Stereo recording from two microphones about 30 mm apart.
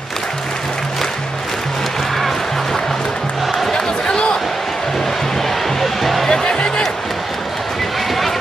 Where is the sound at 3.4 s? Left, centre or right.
Centre.